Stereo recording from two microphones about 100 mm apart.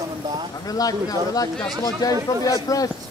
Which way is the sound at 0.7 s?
40° left (ahead or behind).